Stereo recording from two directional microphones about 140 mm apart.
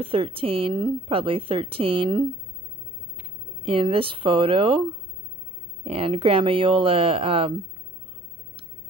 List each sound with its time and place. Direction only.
0.0 s a woman's voice: 40° right (ahead or behind)
3.6 s a woman's voice: 40° right (ahead or behind)
5.9 s a woman's voice: 40° right (ahead or behind)